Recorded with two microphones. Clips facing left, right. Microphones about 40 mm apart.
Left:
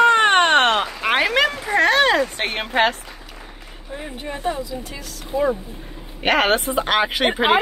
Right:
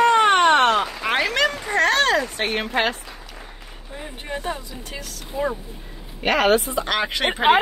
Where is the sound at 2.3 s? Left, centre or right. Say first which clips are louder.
Right 1 dB; left.